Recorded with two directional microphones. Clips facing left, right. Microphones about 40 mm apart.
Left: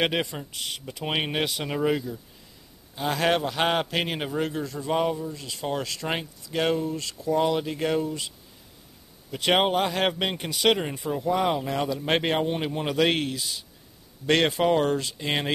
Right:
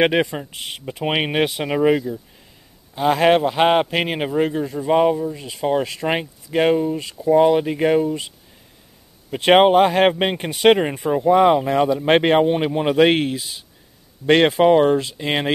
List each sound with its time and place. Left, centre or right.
0.0 s a man's voice: right
9.3 s a man's voice: right